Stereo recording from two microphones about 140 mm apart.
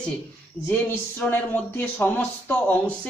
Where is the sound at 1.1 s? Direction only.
15° left (ahead or behind).